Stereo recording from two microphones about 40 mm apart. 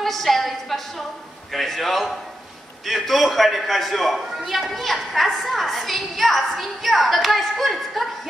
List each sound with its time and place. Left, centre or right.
0.0 s a man's voice: centre